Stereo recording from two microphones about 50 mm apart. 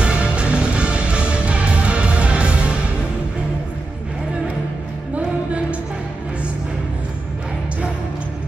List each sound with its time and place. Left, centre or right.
0.0 s music: right
5.1 s music: right